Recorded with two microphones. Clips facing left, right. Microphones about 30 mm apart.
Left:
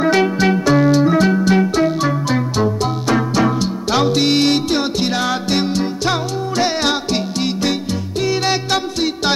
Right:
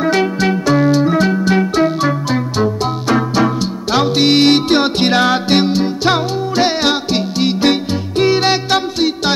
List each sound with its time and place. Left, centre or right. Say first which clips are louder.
0.0 s music: even; centre; by 5.2 s right
5.2 s music: right 5 dB; right
5.7 s music: right 4 dB; right
7.6 s music: right 5 dB; right; by 9.3 s centre